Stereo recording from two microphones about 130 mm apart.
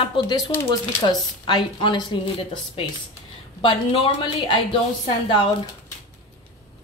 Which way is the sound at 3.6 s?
40° left (ahead or behind).